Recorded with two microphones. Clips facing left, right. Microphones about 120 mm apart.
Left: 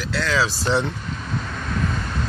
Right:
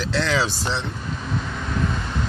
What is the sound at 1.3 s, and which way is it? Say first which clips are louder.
Vehicle: even; 5° right (ahead or behind).